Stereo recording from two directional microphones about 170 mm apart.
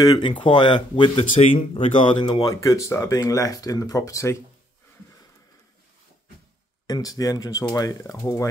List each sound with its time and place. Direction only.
0.0 s speech: 25° left (ahead or behind)
6.9 s speech: 20° left (ahead or behind)